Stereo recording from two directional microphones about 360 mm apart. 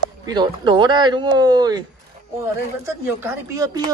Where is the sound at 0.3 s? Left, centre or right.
Centre.